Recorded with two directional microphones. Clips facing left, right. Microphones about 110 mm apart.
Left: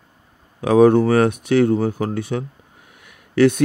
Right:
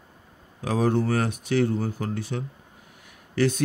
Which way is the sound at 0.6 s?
60° left (ahead or behind).